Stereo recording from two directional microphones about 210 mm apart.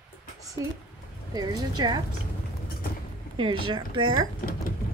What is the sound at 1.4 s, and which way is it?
Speech, 20° right (ahead or behind).